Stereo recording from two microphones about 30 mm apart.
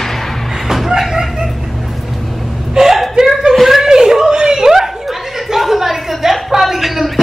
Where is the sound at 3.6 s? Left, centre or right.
Centre.